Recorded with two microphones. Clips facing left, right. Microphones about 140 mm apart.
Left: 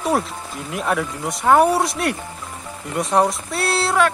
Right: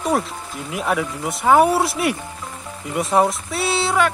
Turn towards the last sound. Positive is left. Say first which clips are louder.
# left 1 dB
turn(degrees=0)  # may be behind; listen again after turning